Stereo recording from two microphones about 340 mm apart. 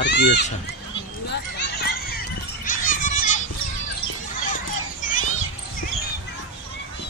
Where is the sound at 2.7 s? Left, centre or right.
Left.